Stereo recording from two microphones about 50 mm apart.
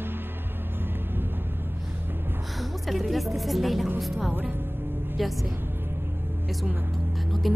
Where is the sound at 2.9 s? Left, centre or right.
Centre.